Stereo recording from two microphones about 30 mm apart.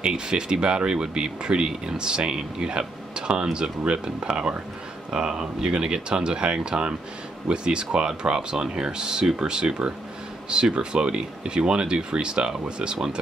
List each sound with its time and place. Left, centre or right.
0.0 s speech: right